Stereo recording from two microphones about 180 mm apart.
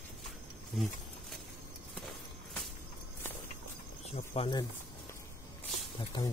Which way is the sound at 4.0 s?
35° left (ahead or behind).